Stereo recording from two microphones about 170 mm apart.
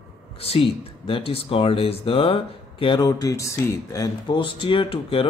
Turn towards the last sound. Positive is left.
turn(degrees=30)  # may be behind; listen again after turning